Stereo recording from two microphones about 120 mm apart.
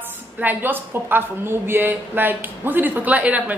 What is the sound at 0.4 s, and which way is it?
A woman's voice, 15° right (ahead or behind).